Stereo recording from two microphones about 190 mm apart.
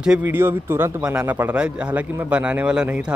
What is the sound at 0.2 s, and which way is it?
Speech, 10° right (ahead or behind).